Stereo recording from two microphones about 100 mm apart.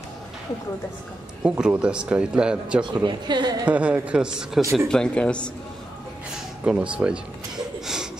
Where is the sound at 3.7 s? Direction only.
10° right (ahead or behind).